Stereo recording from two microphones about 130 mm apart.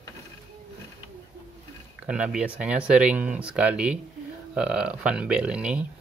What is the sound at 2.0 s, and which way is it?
Speech, 10° right (ahead or behind).